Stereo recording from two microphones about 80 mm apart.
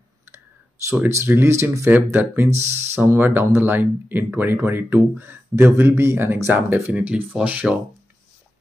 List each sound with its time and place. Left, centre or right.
1.0 s speech: right
1.9 s speech: right
6.5 s speech: centre